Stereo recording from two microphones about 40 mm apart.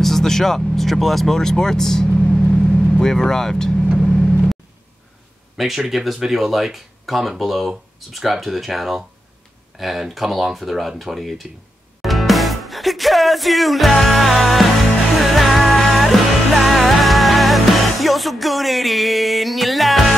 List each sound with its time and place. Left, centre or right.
0.0 s speech: centre
2.5 s vehicle: centre
3.0 s speech: centre
4.0 s vehicle: centre
5.9 s speech: centre
12.0 s music: centre
14.0 s speech: centre
15.1 s music: centre